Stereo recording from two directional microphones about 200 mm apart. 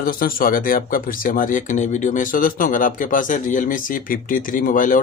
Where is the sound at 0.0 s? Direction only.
45° left (ahead or behind).